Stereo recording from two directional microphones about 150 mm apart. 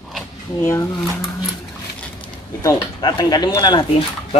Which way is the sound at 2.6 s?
25° left (ahead or behind).